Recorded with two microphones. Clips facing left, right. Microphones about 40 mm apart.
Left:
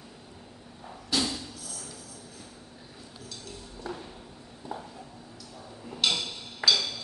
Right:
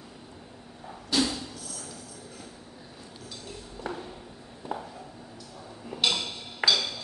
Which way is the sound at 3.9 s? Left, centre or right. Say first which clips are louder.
Right 2 dB; right.